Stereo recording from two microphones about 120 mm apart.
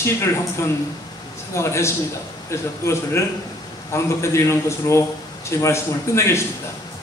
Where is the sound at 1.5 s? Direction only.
20° left (ahead or behind).